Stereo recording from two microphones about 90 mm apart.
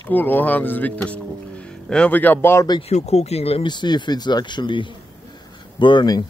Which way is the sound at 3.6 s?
55° left (ahead or behind).